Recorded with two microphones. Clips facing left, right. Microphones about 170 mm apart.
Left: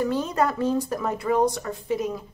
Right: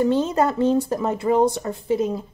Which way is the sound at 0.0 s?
25° right (ahead or behind).